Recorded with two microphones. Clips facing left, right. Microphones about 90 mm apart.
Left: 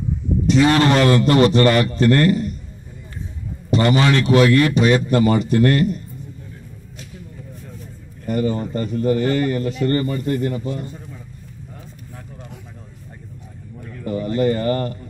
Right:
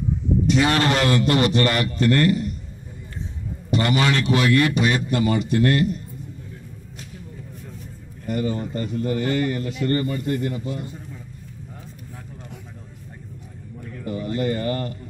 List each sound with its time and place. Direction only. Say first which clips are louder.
0.5 s a man's voice: left 6 dB; 35° left (ahead or behind)
3.7 s a man's voice: left 4 dB; 35° left (ahead or behind)
8.3 s a man's voice: left 4 dB; 40° left (ahead or behind)
14.0 s a man's voice: left 5 dB; 40° left (ahead or behind)